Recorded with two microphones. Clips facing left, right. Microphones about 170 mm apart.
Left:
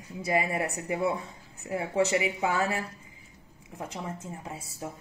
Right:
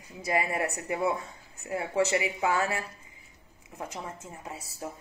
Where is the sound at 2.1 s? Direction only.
30° left (ahead or behind).